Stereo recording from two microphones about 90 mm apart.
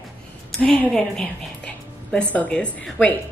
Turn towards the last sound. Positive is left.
turn(degrees=10)  # may be behind; listen again after turning